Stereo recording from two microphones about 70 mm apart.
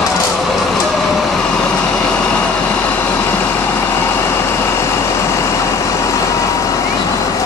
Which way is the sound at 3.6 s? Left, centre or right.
Left.